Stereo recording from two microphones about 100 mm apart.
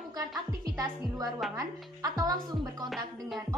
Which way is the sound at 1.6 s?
40° right (ahead or behind).